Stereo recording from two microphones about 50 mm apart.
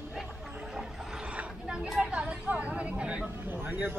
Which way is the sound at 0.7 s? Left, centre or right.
Centre.